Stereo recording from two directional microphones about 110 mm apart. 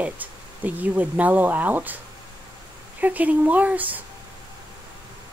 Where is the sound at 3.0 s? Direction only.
15° right (ahead or behind).